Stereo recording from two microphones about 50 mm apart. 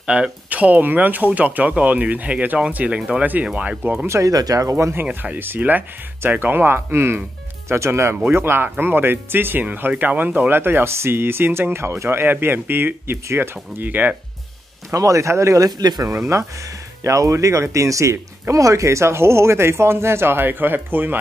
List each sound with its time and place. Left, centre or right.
0.0 s speech: centre
0.5 s speech: right
4.1 s speech: right
5.2 s speech: right
13.8 s speech: right
14.9 s speech: right
17.0 s speech: right